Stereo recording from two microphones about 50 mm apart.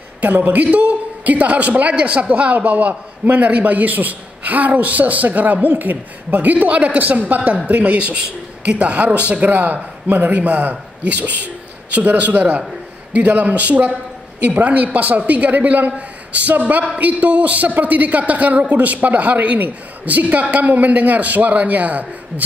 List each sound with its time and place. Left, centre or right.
0.2 s a woman's voice: right